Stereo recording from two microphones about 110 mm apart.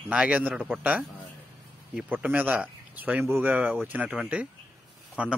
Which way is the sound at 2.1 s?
15° right (ahead or behind).